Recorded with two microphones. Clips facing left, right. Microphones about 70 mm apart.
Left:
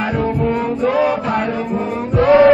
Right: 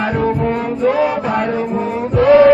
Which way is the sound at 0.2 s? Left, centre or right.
Right.